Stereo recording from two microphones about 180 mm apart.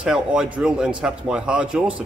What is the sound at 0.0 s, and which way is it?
Speech, 5° right (ahead or behind).